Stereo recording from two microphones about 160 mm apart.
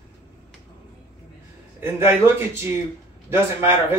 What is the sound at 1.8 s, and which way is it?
Speech, 15° right (ahead or behind).